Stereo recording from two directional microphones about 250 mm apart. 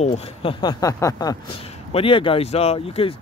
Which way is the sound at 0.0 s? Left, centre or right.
Left.